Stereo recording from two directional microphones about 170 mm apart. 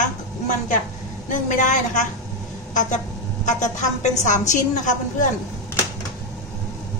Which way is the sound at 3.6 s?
45° left (ahead or behind).